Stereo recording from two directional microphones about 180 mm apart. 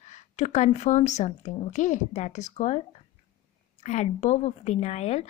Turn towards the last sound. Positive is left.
turn(degrees=35)  # may be behind; listen again after turning